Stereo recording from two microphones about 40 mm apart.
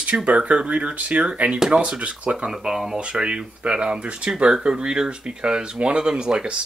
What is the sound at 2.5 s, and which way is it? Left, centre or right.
Speech, centre.